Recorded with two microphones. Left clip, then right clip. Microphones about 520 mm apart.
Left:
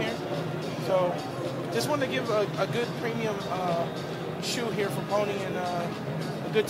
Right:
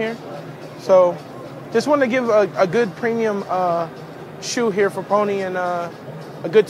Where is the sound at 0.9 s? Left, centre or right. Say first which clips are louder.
Right 13 dB; right.